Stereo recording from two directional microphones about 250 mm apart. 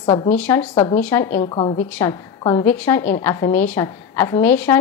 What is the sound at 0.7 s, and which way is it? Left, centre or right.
Speech, centre.